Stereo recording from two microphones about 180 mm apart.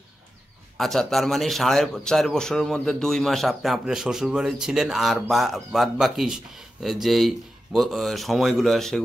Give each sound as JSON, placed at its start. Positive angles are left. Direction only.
{"t": 0.7, "sound": "a man's voice", "side_deg": 0}